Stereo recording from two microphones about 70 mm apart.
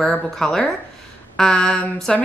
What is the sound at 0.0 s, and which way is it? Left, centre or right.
A woman's voice, centre.